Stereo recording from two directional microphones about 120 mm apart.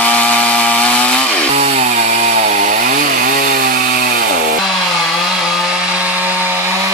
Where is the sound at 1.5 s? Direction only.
65° right (ahead or behind); by 2.9 s 90° right.